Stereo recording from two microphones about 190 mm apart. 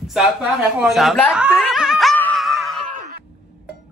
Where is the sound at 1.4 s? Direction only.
5° right (ahead or behind).